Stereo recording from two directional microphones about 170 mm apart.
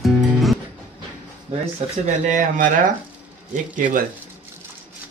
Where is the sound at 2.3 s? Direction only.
50° right (ahead or behind).